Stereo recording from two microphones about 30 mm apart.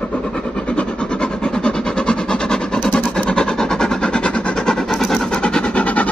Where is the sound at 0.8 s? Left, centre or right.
Left.